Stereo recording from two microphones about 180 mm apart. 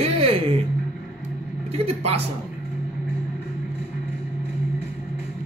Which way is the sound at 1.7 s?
35° right (ahead or behind).